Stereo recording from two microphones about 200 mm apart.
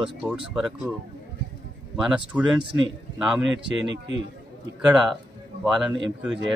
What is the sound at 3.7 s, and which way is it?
Speech, 65° right (ahead or behind).